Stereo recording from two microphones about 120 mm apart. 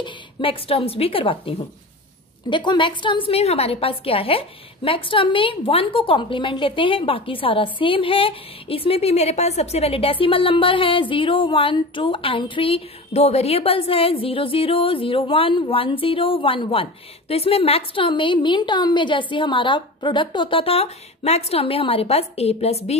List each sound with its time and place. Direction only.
0.0 s a woman's voice: 50° left (ahead or behind)
2.5 s a woman's voice: 40° left (ahead or behind); by 22.9 s 60° left (ahead or behind)